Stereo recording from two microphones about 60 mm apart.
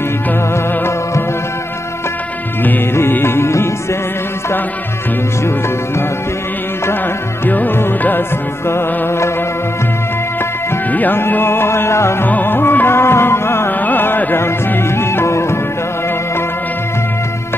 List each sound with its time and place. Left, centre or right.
2.6 s music: left
7.4 s music: left
8.6 s music: left
10.9 s music: left
11.1 s music: left
12.3 s music: left
13.7 s music: left
15.0 s music: left